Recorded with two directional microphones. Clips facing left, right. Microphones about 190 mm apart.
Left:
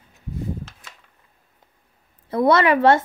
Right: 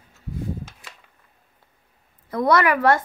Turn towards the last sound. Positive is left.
turn(degrees=25)  # may be behind; listen again after turning